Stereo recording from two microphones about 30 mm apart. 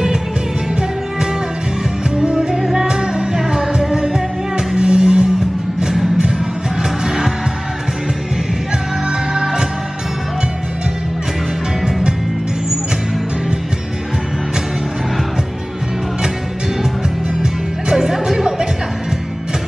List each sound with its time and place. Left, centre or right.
2.0 s music: right
2.9 s music: right
9.3 s music: right
17.4 s music: right